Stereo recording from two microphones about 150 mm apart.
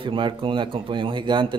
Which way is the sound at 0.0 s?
35° right (ahead or behind).